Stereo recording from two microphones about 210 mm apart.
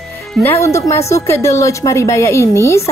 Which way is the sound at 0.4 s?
10° left (ahead or behind).